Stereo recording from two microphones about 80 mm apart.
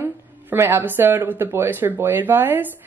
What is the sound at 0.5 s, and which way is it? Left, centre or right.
Speech, right.